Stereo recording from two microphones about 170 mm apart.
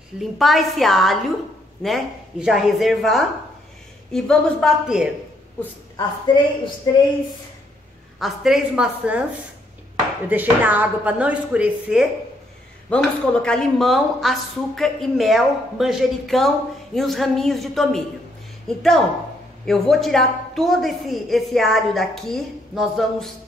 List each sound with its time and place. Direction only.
0.2 s a woman's voice: centre (ahead or behind)
6.2 s a woman's voice: 30° left (ahead or behind)
8.2 s a woman's voice: 5° right (ahead or behind)
10.2 s a woman's voice: 10° right (ahead or behind)
12.9 s a woman's voice: 5° left (ahead or behind)